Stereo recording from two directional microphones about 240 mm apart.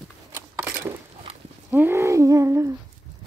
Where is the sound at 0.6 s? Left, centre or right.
Centre.